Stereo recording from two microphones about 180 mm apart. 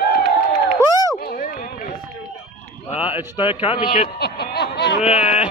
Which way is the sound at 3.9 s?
55° left (ahead or behind).